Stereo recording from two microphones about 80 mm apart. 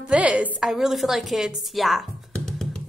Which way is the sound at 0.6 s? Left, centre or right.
Centre.